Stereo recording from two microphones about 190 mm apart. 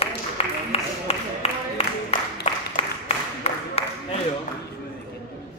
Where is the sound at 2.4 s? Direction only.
30° left (ahead or behind).